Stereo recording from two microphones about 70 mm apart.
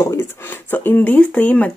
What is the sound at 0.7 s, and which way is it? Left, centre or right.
Speech, left.